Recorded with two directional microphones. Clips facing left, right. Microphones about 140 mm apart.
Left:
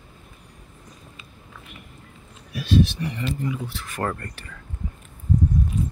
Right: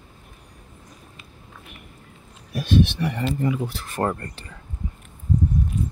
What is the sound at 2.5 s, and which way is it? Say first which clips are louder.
Speech: right 1 dB; 55° right (ahead or behind).